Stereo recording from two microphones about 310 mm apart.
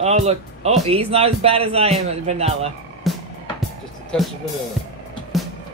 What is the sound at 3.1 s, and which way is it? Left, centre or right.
Music, centre.